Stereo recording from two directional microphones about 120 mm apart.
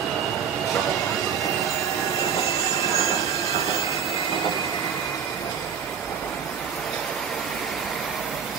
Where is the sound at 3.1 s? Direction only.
25° left (ahead or behind).